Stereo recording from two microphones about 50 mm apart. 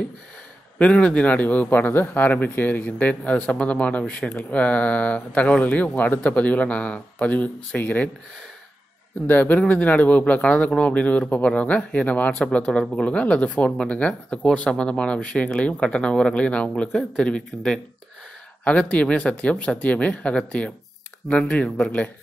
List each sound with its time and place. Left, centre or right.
0.7 s a man's voice: left
9.3 s a man's voice: left; by 17.7 s centre
18.6 s speech: left